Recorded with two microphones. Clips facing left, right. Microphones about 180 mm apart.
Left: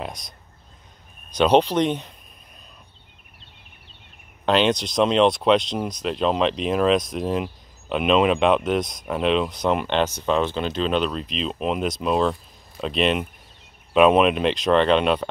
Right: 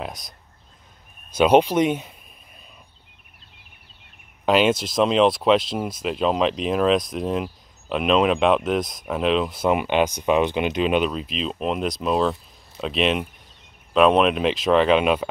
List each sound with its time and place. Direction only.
0.0 s a sound: centre (ahead or behind)
1.3 s speech: 10° right (ahead or behind)
4.5 s speech: 5° right (ahead or behind)